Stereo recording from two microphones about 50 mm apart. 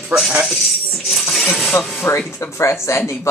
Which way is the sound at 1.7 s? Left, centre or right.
Left.